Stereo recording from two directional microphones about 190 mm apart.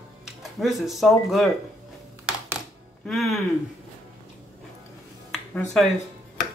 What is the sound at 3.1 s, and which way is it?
Speech, centre (ahead or behind).